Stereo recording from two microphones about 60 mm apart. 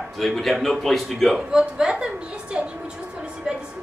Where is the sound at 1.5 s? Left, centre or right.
Centre.